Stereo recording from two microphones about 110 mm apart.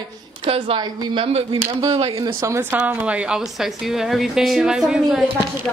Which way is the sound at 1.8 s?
60° right (ahead or behind).